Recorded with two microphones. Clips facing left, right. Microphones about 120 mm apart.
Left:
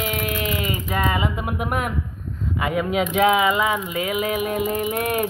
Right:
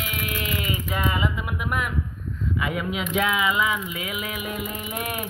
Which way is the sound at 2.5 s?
45° left (ahead or behind).